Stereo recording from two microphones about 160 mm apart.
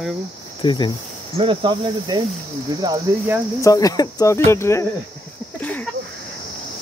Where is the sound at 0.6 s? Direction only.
30° left (ahead or behind).